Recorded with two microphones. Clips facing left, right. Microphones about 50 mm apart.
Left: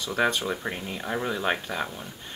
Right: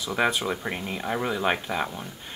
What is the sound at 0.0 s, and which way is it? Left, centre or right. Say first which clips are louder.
Speech: right 1 dB; centre.